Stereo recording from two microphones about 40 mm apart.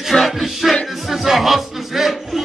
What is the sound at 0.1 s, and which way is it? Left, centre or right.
Music, centre.